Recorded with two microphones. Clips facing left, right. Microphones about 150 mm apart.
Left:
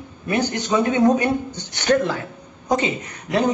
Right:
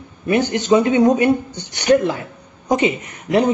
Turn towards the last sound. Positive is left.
turn(degrees=-20)  # may be behind; listen again after turning